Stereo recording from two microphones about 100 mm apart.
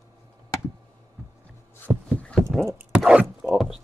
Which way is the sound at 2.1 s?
10° left (ahead or behind).